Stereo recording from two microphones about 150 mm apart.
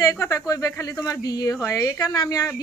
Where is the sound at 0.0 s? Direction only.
20° left (ahead or behind).